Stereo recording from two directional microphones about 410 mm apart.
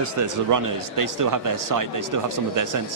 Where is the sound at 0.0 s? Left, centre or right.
Right.